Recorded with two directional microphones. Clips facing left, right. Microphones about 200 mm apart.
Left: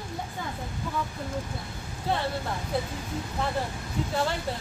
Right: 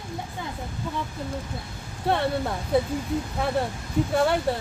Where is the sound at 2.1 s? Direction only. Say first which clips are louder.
Right 4 dB; 65° right (ahead or behind).